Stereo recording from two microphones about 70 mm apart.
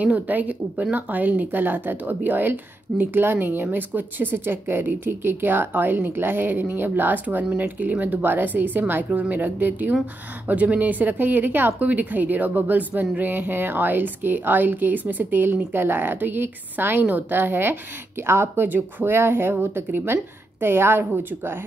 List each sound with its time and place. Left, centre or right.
0.0 s speech: right